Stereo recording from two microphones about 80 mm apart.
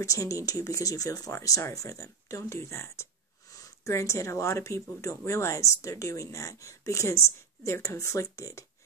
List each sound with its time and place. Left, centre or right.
0.0 s speech: left